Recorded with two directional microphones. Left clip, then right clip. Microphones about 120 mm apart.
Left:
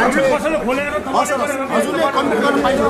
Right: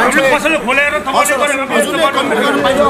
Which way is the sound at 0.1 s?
30° right (ahead or behind).